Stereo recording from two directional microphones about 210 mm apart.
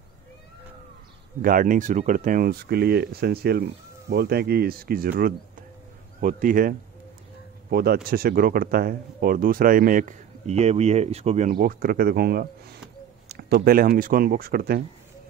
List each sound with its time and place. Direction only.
1.4 s speech: 40° right (ahead or behind)
7.7 s speech: 45° right (ahead or behind)